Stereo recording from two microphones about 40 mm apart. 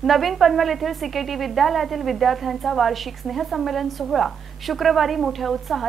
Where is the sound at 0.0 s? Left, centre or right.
Centre.